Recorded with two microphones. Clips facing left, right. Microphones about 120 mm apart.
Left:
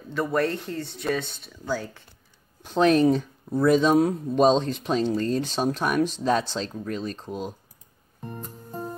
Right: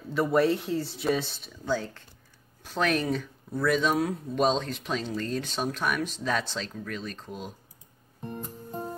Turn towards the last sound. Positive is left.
turn(degrees=35)  # may be behind; listen again after turning